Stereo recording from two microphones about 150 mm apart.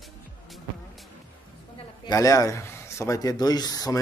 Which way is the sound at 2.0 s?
25° left (ahead or behind).